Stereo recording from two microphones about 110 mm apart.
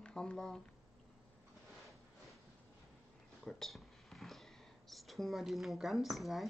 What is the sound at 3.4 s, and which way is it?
Speech, centre (ahead or behind).